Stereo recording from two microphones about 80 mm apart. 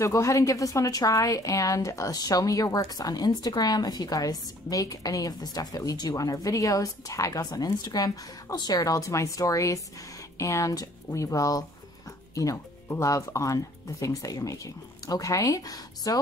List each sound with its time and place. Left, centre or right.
0.0 s a woman's voice: left
13.0 s a woman's voice: left